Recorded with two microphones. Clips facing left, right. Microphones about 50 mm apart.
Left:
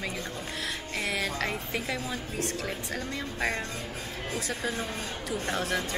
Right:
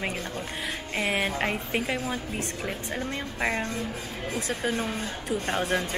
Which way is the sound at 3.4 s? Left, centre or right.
Centre.